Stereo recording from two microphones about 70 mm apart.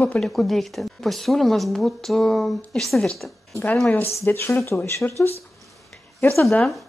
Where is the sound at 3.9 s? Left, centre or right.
Left.